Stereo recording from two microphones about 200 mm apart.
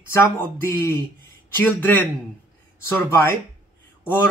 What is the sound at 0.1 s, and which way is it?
Speech, 15° left (ahead or behind).